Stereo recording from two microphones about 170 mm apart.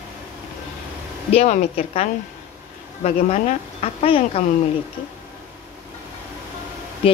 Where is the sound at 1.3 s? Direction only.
35° left (ahead or behind).